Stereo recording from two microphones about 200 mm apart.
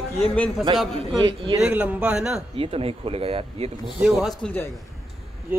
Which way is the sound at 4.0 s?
Centre (ahead or behind).